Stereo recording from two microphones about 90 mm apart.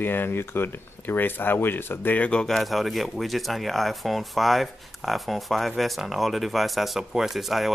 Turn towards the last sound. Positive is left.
turn(degrees=0)  # may be behind; listen again after turning